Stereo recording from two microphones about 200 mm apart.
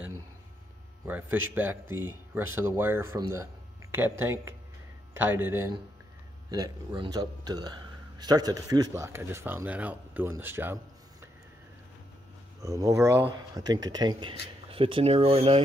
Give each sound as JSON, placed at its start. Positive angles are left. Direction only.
{"t": 1.0, "sound": "speech", "side_deg": -10}
{"t": 12.6, "sound": "speech", "side_deg": -15}